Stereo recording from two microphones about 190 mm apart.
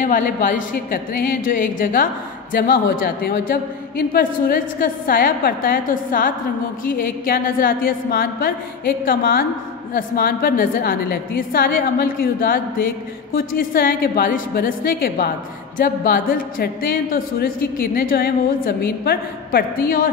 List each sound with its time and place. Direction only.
0.0 s speech: 45° left (ahead or behind)